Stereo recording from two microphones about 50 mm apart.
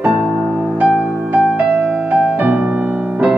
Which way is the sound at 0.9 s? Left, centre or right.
Centre.